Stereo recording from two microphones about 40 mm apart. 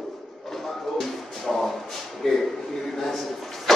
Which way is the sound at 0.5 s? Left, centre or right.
Centre.